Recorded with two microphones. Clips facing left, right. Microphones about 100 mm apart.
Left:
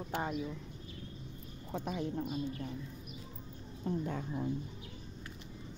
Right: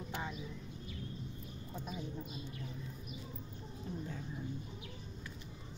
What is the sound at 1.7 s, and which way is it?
Speech, 65° left (ahead or behind).